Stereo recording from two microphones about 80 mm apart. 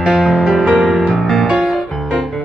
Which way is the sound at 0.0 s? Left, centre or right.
Centre.